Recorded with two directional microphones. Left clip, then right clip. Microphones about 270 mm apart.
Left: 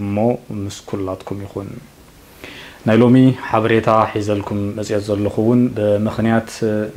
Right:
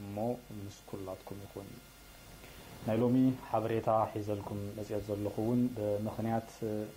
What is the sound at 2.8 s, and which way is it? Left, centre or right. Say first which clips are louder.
Speech: left 18 dB; left.